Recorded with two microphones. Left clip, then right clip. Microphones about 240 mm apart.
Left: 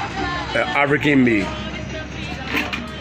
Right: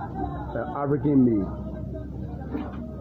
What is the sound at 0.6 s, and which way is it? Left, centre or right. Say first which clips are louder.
Speech: left 10 dB; left.